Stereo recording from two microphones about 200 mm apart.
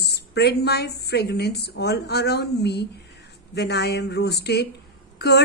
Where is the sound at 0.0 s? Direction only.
55° left (ahead or behind).